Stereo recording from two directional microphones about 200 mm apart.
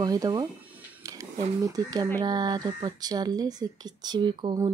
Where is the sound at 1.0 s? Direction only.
15° right (ahead or behind).